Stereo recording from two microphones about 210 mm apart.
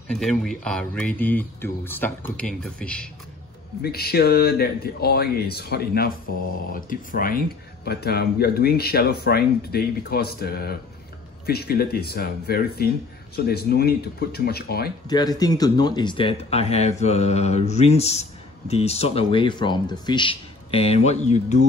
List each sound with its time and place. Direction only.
0.1 s speech: centre (ahead or behind)
3.8 s speech: 50° left (ahead or behind)
15.0 s speech: 20° left (ahead or behind)
17.0 s mantra: 30° left (ahead or behind)
18.7 s speech: 30° left (ahead or behind)